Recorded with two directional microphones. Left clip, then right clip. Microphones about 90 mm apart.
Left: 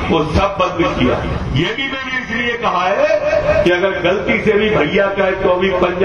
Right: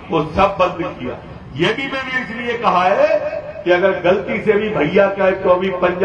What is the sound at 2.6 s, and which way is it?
A man's voice, 25° right (ahead or behind).